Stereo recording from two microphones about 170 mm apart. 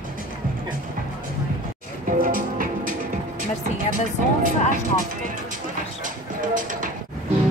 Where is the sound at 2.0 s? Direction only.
55° right (ahead or behind).